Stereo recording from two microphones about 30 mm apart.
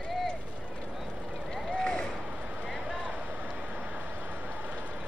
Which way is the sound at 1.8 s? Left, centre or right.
Left.